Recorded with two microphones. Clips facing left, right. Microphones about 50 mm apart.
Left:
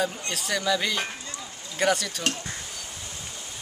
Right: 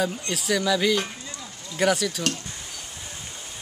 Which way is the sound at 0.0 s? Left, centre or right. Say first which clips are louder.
Right 2 dB; centre.